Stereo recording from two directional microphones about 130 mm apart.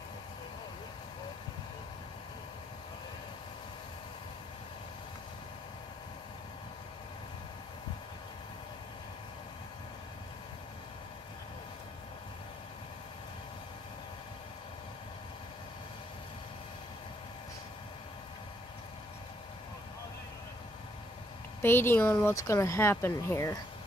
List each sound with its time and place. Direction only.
21.5 s speech: 15° left (ahead or behind)